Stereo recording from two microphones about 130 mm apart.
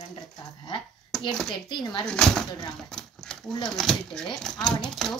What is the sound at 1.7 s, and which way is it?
Speech, 35° left (ahead or behind).